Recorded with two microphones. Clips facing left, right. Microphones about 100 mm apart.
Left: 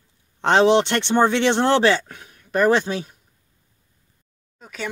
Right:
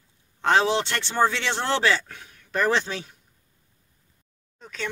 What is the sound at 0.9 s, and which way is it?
Speech, 20° left (ahead or behind).